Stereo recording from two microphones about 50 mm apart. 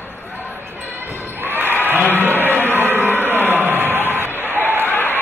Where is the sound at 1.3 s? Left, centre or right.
Right.